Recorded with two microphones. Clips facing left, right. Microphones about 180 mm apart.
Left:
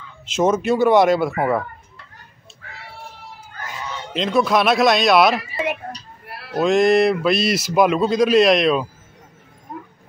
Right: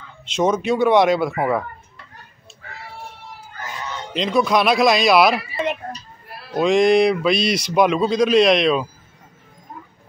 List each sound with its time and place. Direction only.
0.2 s speech: 5° left (ahead or behind)
4.1 s speech: centre (ahead or behind)
5.9 s a sound: 75° left (ahead or behind)
6.5 s speech: centre (ahead or behind)